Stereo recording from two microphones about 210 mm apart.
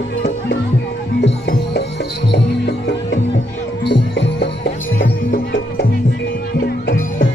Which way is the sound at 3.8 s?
55° left (ahead or behind).